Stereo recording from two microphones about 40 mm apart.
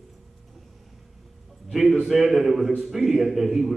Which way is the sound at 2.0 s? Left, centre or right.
Centre.